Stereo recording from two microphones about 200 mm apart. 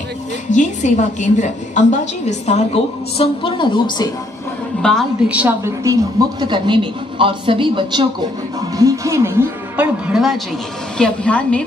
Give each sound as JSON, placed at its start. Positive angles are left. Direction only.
{"t": 0.5, "sound": "a woman's voice", "side_deg": 35}
{"t": 4.8, "sound": "a woman's voice", "side_deg": 0}